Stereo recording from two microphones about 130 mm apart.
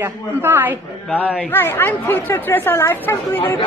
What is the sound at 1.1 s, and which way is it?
Speech, 10° left (ahead or behind).